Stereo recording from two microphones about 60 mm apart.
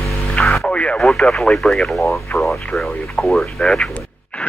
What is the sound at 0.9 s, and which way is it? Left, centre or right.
Speech, centre.